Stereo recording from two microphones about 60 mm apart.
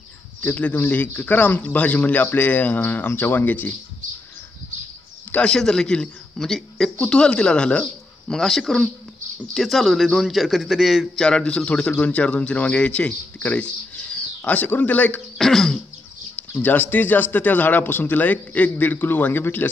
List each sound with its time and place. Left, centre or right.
0.4 s speech: left
5.4 s a man's voice: centre
7.8 s speech: centre
11.1 s a man's voice: centre
15.3 s throat clearing: centre
16.6 s speech: left